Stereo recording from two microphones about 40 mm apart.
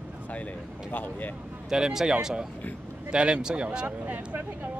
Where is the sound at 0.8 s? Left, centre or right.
Left.